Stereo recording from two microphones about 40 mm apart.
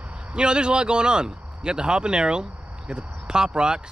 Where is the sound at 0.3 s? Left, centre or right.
Right.